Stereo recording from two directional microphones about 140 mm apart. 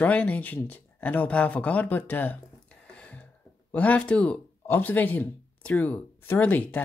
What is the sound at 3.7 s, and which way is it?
Speech, 10° left (ahead or behind).